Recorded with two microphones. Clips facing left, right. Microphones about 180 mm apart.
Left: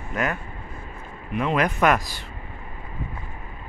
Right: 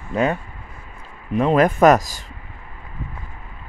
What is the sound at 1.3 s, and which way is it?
Speech, 40° right (ahead or behind).